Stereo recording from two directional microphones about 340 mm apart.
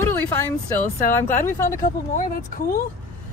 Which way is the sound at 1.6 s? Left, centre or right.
Left.